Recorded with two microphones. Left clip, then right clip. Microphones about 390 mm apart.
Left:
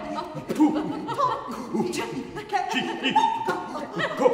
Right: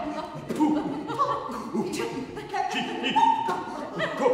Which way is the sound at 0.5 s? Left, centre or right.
Left.